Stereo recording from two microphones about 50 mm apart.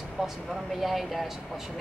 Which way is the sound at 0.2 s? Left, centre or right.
Centre.